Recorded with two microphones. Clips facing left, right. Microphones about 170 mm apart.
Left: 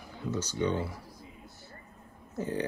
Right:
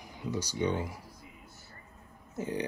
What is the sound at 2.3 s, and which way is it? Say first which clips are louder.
Speech: left 1 dB; 15° right (ahead or behind).